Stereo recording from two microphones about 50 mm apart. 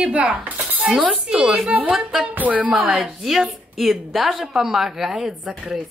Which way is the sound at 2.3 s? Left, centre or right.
Right.